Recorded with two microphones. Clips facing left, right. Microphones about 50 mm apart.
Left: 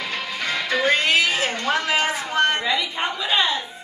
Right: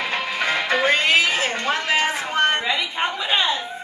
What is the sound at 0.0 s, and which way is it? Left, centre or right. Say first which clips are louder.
Music: right 4 dB; right.